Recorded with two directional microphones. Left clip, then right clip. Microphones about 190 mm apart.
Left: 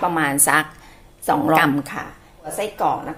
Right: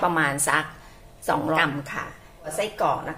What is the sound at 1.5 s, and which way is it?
Speech, 40° left (ahead or behind).